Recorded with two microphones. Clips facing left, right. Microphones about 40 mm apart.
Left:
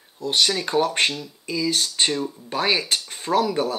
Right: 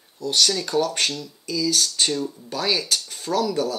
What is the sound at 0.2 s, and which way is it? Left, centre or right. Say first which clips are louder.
Speech: left 1 dB; left.